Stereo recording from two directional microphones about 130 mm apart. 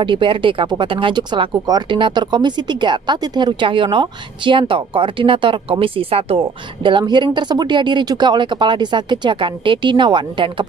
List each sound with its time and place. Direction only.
0.0 s speech: 40° right (ahead or behind)